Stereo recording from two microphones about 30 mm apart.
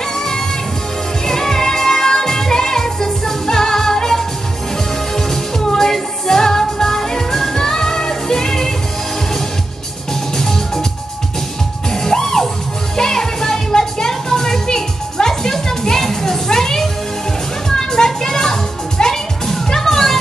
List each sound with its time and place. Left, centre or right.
1.2 s music: centre
10.3 s music: centre
11.9 s music: centre